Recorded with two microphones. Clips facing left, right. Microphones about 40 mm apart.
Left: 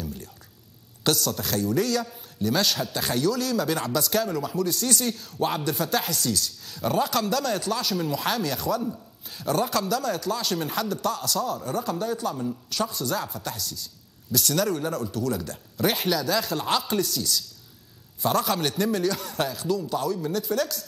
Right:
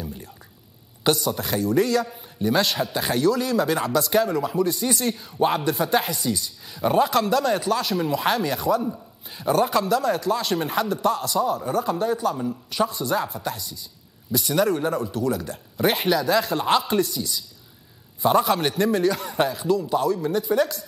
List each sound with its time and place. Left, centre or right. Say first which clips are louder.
0.0 s whispering: right 1 dB; centre
1.0 s a man's voice: right 3 dB; centre